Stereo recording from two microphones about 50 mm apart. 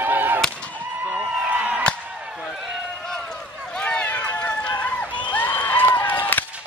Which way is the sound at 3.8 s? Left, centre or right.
Left.